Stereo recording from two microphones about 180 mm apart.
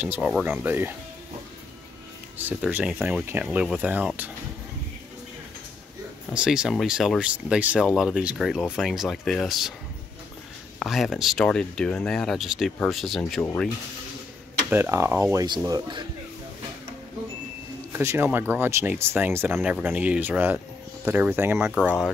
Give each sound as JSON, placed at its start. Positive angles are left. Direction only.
{"t": 0.0, "sound": "speech", "side_deg": -5}
{"t": 2.3, "sound": "speech", "side_deg": -10}
{"t": 6.3, "sound": "speech", "side_deg": -5}
{"t": 10.8, "sound": "speech", "side_deg": 0}
{"t": 14.7, "sound": "speech", "side_deg": -15}
{"t": 17.9, "sound": "speech", "side_deg": -15}